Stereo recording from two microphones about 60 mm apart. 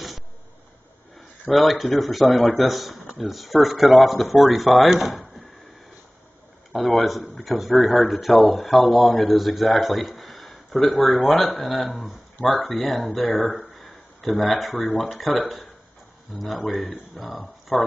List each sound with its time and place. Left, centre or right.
1.5 s speech: centre
6.7 s speech: centre